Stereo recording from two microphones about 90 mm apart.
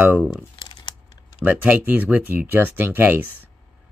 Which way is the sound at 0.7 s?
55° left (ahead or behind).